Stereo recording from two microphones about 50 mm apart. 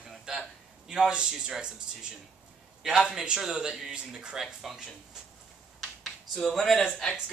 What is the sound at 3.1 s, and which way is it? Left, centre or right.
A man's voice, centre.